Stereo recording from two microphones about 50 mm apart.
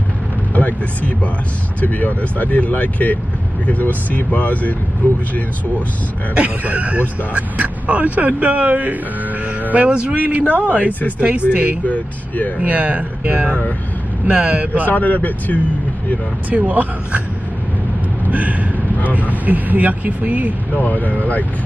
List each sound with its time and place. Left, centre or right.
0.6 s speech: left
6.3 s speech: right
11.8 s speech: left
12.5 s speech: right
14.9 s speech: left
16.4 s speech: right
18.3 s speech: right
20.8 s speech: left